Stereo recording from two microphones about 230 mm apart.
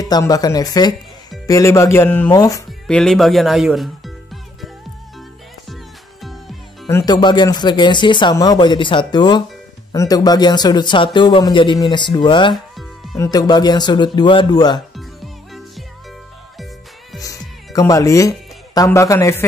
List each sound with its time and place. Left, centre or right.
0.0 s speech: centre
3.0 s speech: centre
6.9 s speech: centre
15.0 s music: centre
17.2 s music: centre
18.8 s speech: centre